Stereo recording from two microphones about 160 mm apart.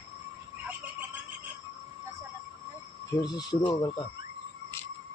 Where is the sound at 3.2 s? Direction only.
25° left (ahead or behind).